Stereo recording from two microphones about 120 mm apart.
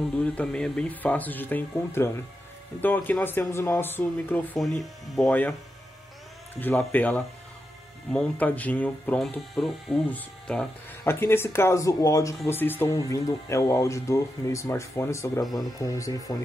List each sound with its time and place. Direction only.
0.2 s speech: 5° left (ahead or behind)
4.6 s speech: centre (ahead or behind)
6.6 s speech: 15° left (ahead or behind)
9.2 s speech: centre (ahead or behind)
11.1 s speech: 20° left (ahead or behind)